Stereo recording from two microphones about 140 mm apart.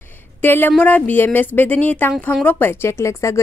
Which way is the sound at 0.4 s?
15° left (ahead or behind).